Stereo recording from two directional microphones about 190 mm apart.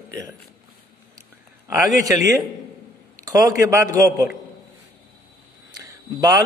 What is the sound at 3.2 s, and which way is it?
A man's voice, 20° right (ahead or behind).